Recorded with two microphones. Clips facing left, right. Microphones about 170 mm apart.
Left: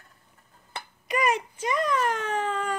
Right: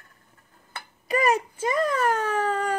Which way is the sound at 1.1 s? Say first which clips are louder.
Right 3 dB; 40° right (ahead or behind).